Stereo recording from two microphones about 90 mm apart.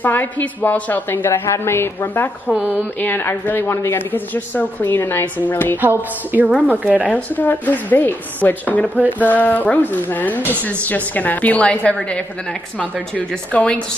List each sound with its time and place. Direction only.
0.0 s speech: 20° left (ahead or behind)
2.4 s a woman's voice: 15° right (ahead or behind)
3.0 s speech: 20° left (ahead or behind)
5.8 s a woman's voice: 20° right (ahead or behind)
7.1 s speech: 15° left (ahead or behind)
13.5 s speech: 15° left (ahead or behind)